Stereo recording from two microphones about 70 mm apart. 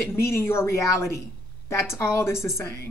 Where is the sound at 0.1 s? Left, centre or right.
Left.